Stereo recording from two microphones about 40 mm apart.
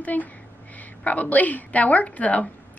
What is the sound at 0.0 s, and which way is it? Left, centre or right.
Speech, left.